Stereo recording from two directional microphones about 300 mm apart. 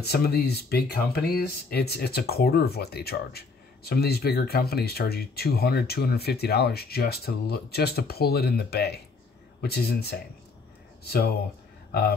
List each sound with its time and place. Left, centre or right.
0.0 s speech: left